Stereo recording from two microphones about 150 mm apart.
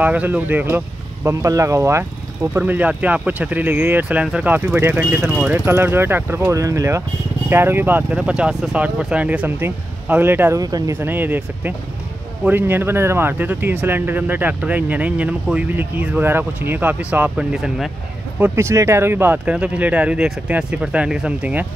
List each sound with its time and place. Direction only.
0.0 s speech: 10° right (ahead or behind)
10.6 s speech: 25° right (ahead or behind)
11.0 s speech: 15° right (ahead or behind)
18.4 s speech: 20° right (ahead or behind)